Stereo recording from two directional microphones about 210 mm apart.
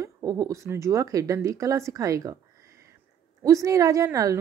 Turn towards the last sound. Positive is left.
turn(degrees=-15)  # may be behind; listen again after turning